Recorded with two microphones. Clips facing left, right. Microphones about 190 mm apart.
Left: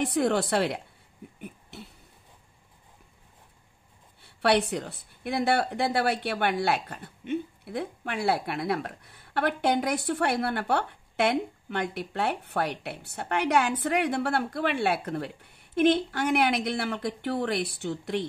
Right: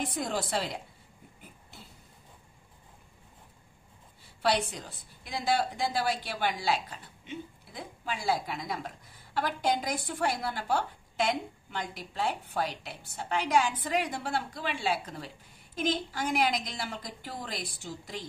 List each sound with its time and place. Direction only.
0.0 s a woman's voice: 65° left (ahead or behind)
1.4 s cough: 70° left (ahead or behind)
4.2 s a woman's voice: 65° left (ahead or behind)